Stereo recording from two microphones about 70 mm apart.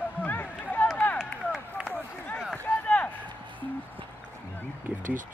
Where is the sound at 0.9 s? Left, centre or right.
Left.